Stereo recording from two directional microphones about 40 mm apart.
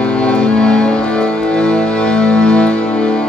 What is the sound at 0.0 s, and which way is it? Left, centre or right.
Music, left.